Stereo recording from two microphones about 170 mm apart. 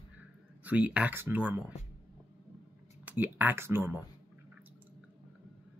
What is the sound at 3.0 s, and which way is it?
Speech, 10° right (ahead or behind).